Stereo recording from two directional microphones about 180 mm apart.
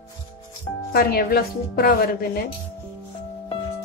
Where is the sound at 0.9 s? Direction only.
60° left (ahead or behind).